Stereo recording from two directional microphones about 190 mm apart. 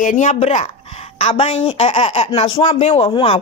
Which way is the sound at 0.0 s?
40° left (ahead or behind).